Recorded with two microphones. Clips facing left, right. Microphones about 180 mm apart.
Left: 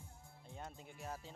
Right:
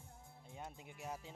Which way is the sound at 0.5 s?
10° right (ahead or behind).